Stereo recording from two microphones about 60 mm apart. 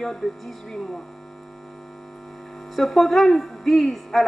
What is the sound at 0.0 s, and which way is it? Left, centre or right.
Speech, centre.